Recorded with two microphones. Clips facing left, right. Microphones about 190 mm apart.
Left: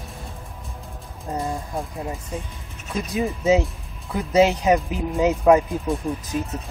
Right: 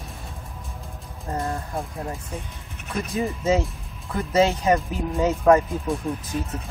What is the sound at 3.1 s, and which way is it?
Speech, 15° left (ahead or behind).